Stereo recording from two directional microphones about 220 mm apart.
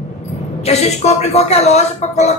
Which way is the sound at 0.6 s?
30° left (ahead or behind).